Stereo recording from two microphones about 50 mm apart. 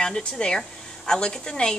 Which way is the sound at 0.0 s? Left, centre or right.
Centre.